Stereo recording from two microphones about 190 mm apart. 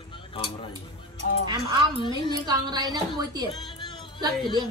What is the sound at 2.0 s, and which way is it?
Speech, 25° left (ahead or behind).